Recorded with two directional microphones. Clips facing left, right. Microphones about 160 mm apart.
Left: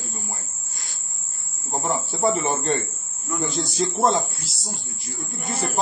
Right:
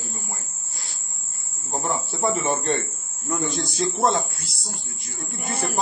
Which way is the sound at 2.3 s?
Centre (ahead or behind).